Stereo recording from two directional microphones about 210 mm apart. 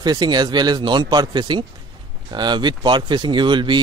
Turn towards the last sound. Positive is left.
turn(degrees=-20)  # may be behind; listen again after turning